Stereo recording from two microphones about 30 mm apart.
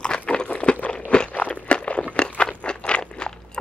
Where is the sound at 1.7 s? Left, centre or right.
Left.